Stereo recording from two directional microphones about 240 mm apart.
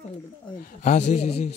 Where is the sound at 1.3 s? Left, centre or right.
Left.